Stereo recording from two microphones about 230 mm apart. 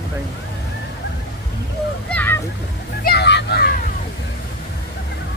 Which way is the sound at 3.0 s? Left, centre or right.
Left.